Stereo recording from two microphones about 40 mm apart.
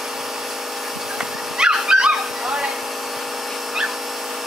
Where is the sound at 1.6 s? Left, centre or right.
Right.